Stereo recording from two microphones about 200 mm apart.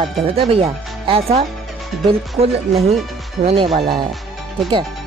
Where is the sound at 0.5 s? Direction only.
30° right (ahead or behind).